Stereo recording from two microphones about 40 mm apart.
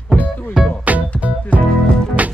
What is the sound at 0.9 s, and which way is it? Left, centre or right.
Music, right.